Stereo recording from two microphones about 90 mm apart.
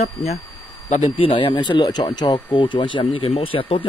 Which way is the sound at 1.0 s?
75° left (ahead or behind).